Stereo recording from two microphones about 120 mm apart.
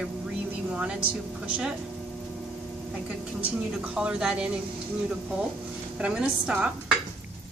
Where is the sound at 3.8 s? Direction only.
10° right (ahead or behind).